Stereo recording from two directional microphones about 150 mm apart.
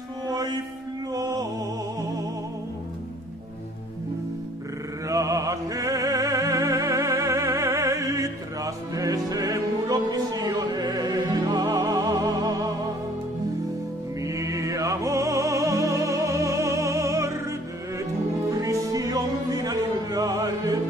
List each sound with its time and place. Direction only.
1.1 s music: 25° right (ahead or behind)
5.0 s music: 20° right (ahead or behind)
14.2 s music: 20° right (ahead or behind)